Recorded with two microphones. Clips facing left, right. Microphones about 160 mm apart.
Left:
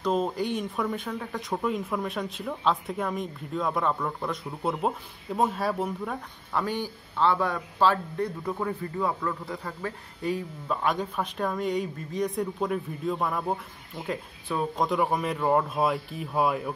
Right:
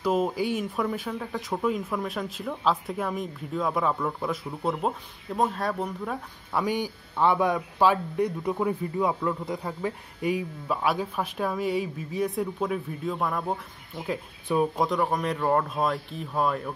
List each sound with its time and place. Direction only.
0.0 s speech: 10° right (ahead or behind)
6.5 s speech: 10° right (ahead or behind)
14.5 s speech: 15° right (ahead or behind)
14.9 s speech: 5° left (ahead or behind)